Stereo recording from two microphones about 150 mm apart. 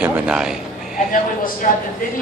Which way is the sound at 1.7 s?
60° left (ahead or behind).